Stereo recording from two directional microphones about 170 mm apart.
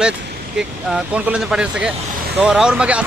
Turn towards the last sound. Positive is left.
turn(degrees=-5)  # may be behind; listen again after turning